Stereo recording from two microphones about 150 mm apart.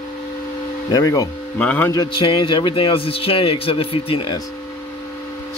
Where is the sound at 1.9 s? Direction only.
30° left (ahead or behind).